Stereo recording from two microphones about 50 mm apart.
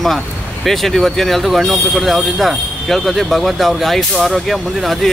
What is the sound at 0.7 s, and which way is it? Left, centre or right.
Speech, centre.